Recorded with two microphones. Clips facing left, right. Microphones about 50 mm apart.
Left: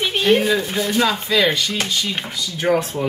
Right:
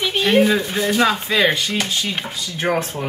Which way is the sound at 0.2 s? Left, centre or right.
Centre.